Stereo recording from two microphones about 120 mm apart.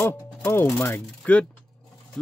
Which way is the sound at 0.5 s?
20° left (ahead or behind).